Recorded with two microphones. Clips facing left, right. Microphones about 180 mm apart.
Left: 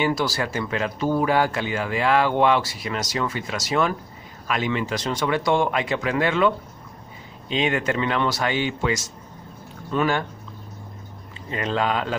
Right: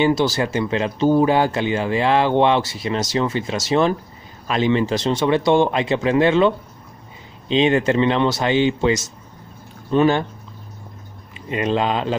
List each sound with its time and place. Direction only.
0.0 s speech: 25° right (ahead or behind)
11.4 s speech: 20° right (ahead or behind)